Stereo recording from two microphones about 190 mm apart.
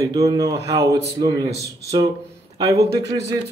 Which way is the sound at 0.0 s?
20° right (ahead or behind).